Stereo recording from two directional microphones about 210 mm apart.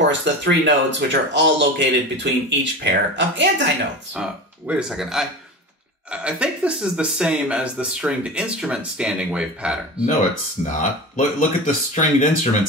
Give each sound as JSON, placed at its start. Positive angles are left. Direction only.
{"t": 0.0, "sound": "speech", "side_deg": -60}
{"t": 4.1, "sound": "speech", "side_deg": -5}
{"t": 10.6, "sound": "speech", "side_deg": 35}